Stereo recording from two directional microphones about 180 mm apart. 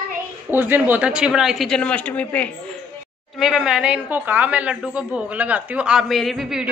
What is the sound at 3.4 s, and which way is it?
A woman's voice, centre (ahead or behind).